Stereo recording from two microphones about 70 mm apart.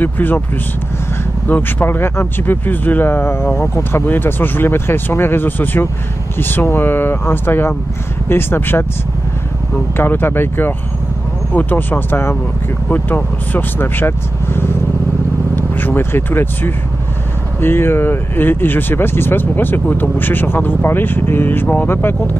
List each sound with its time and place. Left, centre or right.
0.0 s speech: left
1.5 s speech: left
9.9 s speech: left